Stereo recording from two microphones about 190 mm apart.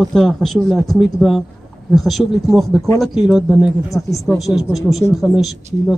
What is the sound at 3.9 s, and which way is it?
Speech, 15° left (ahead or behind).